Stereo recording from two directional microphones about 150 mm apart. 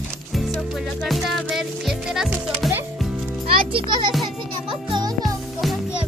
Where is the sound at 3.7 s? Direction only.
35° right (ahead or behind).